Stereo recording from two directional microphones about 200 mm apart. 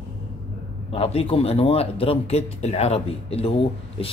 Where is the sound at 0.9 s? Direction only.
30° left (ahead or behind).